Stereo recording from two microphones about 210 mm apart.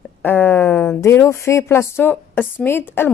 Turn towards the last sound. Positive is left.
turn(degrees=10)  # may be behind; listen again after turning